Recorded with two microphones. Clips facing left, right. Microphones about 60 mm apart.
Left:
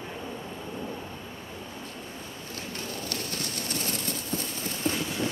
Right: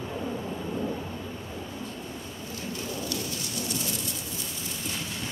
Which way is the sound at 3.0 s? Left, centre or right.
Left.